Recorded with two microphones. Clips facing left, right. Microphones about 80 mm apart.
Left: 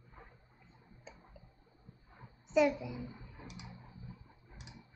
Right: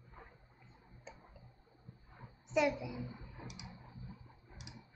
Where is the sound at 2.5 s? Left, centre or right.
Centre.